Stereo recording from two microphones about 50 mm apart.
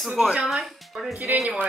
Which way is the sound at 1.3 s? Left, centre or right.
Right.